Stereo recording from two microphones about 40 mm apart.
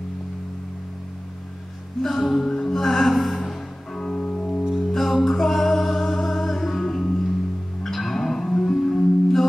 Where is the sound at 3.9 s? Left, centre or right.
Centre.